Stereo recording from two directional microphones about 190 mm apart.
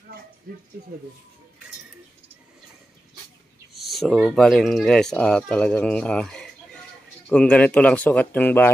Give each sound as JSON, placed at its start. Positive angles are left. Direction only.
{"t": 0.8, "sound": "speech", "side_deg": -55}
{"t": 3.7, "sound": "speech", "side_deg": 0}